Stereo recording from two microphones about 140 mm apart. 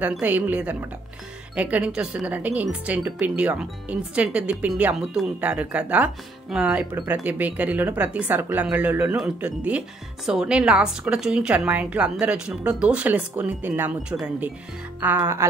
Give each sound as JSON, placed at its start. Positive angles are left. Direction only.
{"t": 0.0, "sound": "speech", "side_deg": -10}